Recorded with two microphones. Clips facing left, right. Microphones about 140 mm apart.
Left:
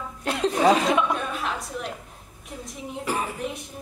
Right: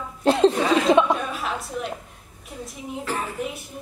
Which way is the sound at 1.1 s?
Centre (ahead or behind).